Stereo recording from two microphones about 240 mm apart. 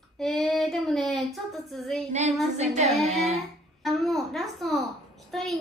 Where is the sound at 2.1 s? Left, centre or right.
Right.